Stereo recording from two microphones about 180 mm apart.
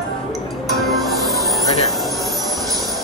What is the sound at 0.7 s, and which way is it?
Music, centre (ahead or behind).